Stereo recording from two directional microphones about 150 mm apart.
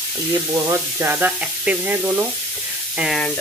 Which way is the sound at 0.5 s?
20° right (ahead or behind).